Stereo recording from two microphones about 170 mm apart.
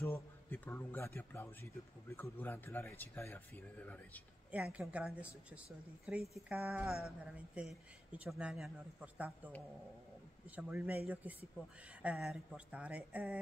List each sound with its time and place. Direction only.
0.0 s speech: 10° left (ahead or behind)
4.5 s speech: 10° right (ahead or behind)
10.5 s speech: 10° right (ahead or behind)